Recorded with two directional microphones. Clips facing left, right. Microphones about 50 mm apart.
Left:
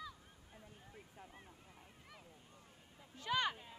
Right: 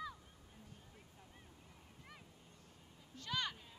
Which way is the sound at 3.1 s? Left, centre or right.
Centre.